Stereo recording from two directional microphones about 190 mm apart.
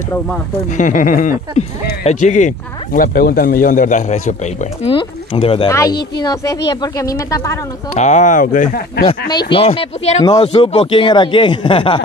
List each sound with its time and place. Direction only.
0.7 s speech: 45° left (ahead or behind)
4.8 s speech: 30° left (ahead or behind)
5.7 s a woman's voice: 15° left (ahead or behind)
7.9 s speech: 40° left (ahead or behind)
9.3 s speech: 25° left (ahead or behind)
10.2 s speech: 20° left (ahead or behind)